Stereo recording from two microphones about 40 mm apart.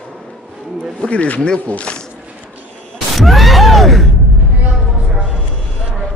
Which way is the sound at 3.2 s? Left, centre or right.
Centre.